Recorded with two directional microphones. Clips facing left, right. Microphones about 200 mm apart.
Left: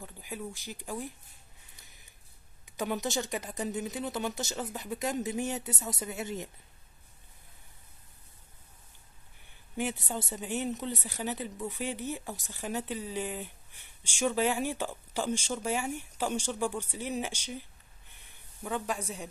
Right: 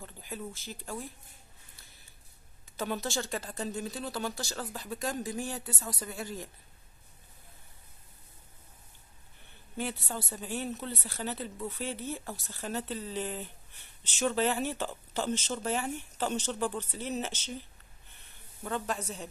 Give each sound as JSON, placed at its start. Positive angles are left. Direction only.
{"t": 0.0, "sound": "a sound", "side_deg": 15}
{"t": 0.5, "sound": "a woman's voice", "side_deg": 15}
{"t": 2.6, "sound": "speech", "side_deg": 15}
{"t": 9.8, "sound": "a woman's voice", "side_deg": 15}